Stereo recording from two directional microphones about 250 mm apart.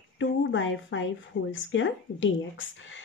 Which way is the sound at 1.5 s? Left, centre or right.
Left.